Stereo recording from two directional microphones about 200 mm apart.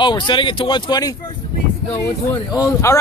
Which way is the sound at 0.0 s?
25° left (ahead or behind).